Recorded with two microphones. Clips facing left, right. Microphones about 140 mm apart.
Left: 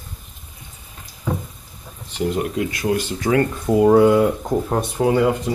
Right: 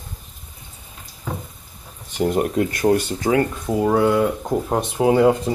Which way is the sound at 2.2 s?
45° right (ahead or behind).